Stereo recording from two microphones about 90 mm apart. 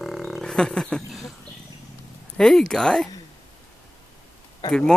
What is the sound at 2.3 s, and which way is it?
Speech, 5° left (ahead or behind).